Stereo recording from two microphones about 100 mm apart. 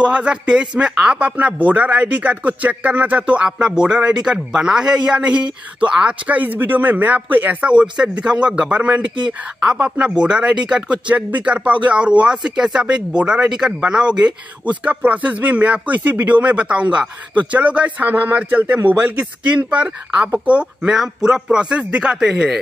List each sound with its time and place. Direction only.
0.0 s a man's voice: 10° right (ahead or behind)